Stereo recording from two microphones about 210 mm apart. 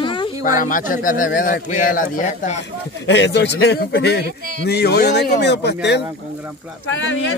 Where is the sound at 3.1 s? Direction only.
55° left (ahead or behind).